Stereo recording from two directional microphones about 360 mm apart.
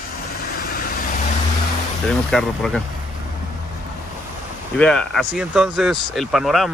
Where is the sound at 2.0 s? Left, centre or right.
Centre.